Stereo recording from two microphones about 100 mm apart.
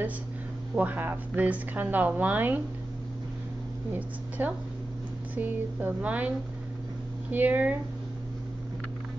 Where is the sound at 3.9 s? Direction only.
15° right (ahead or behind).